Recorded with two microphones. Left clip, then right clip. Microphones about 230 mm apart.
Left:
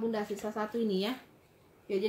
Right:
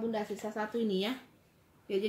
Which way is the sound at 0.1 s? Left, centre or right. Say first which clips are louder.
Left 1 dB; centre.